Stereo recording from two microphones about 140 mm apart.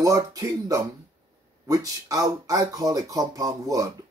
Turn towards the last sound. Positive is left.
turn(degrees=-25)  # may be behind; listen again after turning